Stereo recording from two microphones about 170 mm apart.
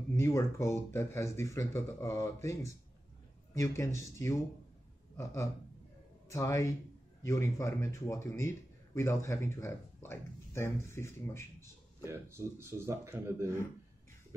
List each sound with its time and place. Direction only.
0.1 s a man's voice: 15° left (ahead or behind)
12.0 s a man's voice: 15° right (ahead or behind)